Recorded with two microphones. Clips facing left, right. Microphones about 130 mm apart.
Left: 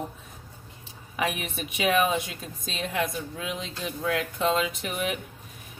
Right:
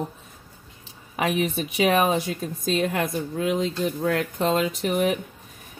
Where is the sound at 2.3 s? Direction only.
45° right (ahead or behind).